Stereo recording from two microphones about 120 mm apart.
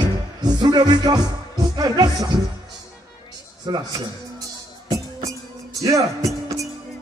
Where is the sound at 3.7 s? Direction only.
40° right (ahead or behind).